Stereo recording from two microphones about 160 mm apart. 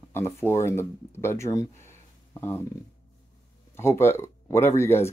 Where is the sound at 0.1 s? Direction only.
15° left (ahead or behind).